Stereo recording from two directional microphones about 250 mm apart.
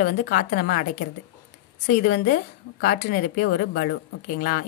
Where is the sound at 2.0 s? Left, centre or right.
Left.